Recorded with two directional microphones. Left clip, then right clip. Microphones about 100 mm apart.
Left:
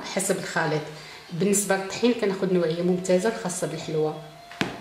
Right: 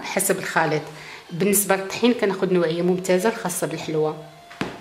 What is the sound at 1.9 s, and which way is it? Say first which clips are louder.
A woman's voice: right 3 dB; 35° right (ahead or behind).